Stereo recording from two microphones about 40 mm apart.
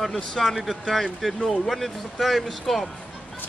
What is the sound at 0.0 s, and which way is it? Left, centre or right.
Speech, centre.